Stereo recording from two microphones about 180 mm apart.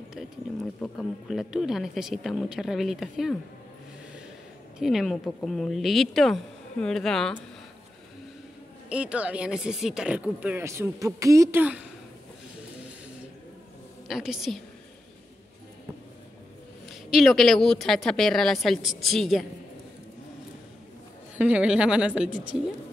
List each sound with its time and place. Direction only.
0.7 s speech: 10° left (ahead or behind)
1.3 s speech: centre (ahead or behind)
4.7 s speech: centre (ahead or behind)
8.8 s speech: 5° right (ahead or behind)
14.0 s speech: centre (ahead or behind)
17.1 s speech: centre (ahead or behind)
21.4 s speech: 5° right (ahead or behind)